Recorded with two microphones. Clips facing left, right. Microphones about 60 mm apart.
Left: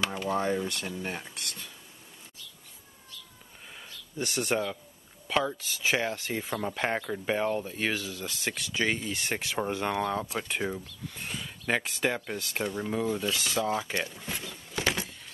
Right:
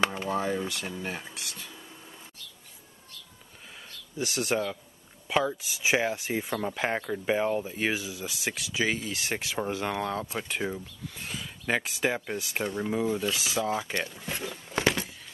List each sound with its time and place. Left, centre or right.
0.0 s a sound: right
0.3 s speech: centre
4.2 s speech: centre